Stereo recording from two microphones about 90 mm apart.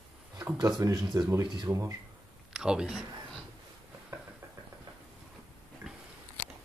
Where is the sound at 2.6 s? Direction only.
5° right (ahead or behind).